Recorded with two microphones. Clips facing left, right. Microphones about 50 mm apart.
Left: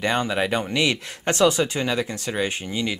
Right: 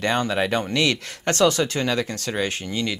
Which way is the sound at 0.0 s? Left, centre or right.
Centre.